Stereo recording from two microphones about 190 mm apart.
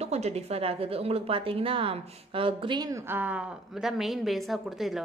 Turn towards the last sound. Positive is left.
turn(degrees=0)  # may be behind; listen again after turning